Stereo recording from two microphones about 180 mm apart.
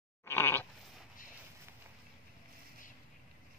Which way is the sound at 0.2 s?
10° left (ahead or behind).